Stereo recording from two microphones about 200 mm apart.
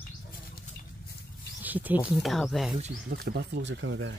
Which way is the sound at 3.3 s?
60° right (ahead or behind).